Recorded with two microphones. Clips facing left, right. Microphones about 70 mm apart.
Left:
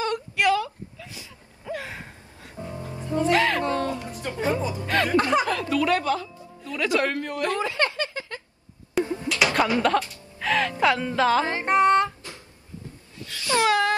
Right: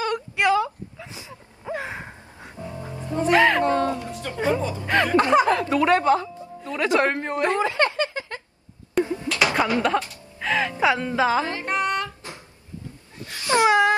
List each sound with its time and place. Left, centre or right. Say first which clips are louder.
0.0 s whimper: right 1 dB; right
1.7 s gasp: right 3 dB; right
2.8 s music: even; right
4.3 s speech: right 2 dB; right
4.6 s speech: right 1 dB; centre
4.8 s speech: right 3 dB; right
9.0 s music: right 2 dB; centre
9.5 s speech: left 1 dB; centre
11.4 s music: left 5 dB; left
13.2 s wail: right 3 dB; right